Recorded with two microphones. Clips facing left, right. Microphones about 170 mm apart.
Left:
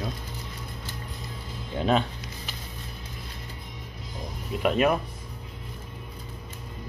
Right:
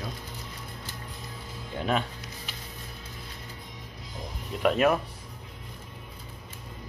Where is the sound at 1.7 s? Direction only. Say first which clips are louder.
Left 4 dB; 25° left (ahead or behind).